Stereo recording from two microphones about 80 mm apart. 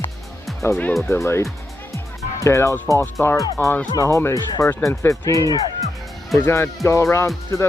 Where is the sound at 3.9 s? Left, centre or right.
Left.